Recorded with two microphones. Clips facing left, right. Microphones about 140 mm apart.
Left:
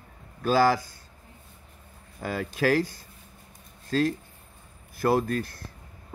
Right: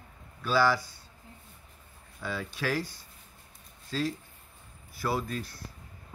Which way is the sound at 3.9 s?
50° left (ahead or behind).